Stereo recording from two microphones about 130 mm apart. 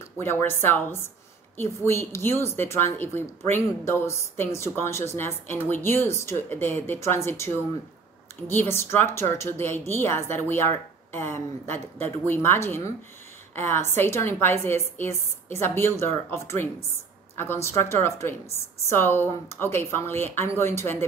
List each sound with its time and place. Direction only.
0.2 s speech: 15° left (ahead or behind)